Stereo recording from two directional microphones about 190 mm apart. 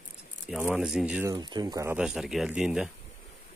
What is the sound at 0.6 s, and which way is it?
Speech, 5° right (ahead or behind).